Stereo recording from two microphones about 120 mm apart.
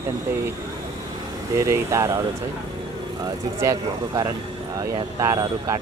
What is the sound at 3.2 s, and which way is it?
Speech, 30° right (ahead or behind).